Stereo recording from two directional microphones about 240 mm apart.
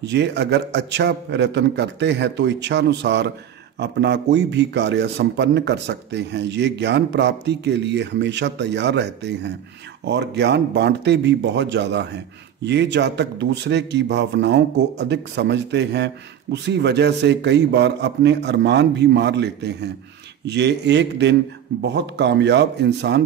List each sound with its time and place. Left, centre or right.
0.0 s a man's voice: right